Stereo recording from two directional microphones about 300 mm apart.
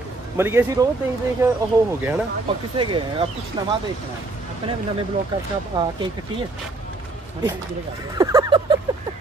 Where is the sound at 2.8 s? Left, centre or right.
Centre.